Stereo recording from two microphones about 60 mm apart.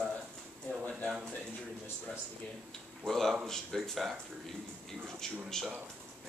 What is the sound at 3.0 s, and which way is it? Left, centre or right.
Speech, centre.